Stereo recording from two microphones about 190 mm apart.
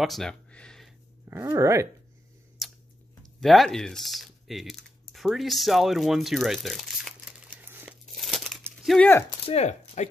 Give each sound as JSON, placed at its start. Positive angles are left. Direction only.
{"t": 0.0, "sound": "a sound", "side_deg": 0}
{"t": 1.2, "sound": "speech", "side_deg": -15}
{"t": 2.6, "sound": "a sound", "side_deg": 0}
{"t": 3.2, "sound": "typing", "side_deg": 0}
{"t": 8.8, "sound": "speech", "side_deg": 5}
{"t": 9.5, "sound": "speech", "side_deg": 35}